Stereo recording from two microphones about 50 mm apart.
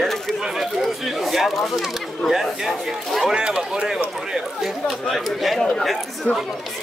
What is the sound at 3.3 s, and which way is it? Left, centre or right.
Speech, centre.